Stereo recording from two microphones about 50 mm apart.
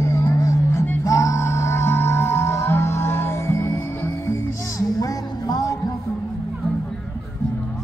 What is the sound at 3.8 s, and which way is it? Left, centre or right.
Music, left.